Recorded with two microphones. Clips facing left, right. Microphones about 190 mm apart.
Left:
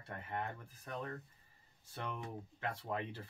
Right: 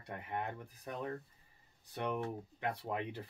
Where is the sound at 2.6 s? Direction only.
15° right (ahead or behind).